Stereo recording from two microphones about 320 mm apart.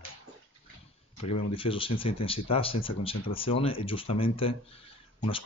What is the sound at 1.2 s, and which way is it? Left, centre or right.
Speech, centre.